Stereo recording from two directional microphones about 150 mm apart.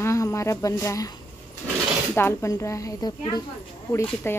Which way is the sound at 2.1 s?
15° left (ahead or behind).